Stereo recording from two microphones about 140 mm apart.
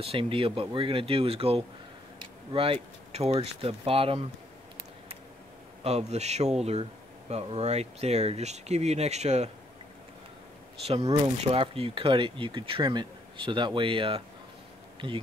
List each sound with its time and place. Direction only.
0.0 s speech: 40° right (ahead or behind)
5.9 s speech: 50° right (ahead or behind)
11.4 s speech: 45° right (ahead or behind)